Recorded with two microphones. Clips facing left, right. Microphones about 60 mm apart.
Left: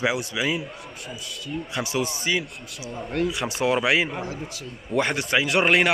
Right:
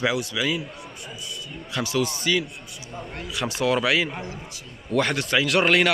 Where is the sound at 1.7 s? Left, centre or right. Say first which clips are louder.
Right 3 dB; left.